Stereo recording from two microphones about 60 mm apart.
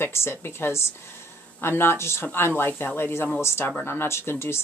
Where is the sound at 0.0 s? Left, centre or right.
Left.